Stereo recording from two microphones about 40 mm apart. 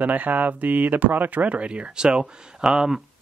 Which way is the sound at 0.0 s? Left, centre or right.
Right.